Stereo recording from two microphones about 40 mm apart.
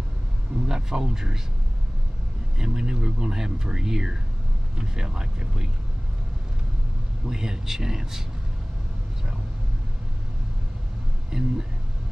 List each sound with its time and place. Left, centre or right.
0.7 s speech: centre
2.6 s speech: centre
7.2 s speech: centre
11.2 s speech: centre